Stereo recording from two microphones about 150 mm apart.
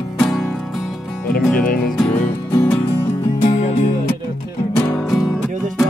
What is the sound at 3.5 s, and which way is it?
Music, 50° left (ahead or behind).